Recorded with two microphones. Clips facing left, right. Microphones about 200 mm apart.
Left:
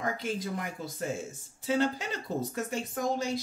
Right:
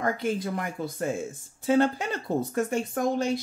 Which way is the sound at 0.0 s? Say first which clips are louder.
Right 5 dB; 55° right (ahead or behind).